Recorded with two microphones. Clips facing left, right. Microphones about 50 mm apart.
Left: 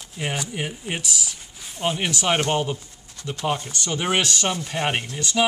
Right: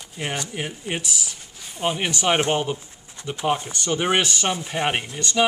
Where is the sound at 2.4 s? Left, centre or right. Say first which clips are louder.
Right 1 dB; right.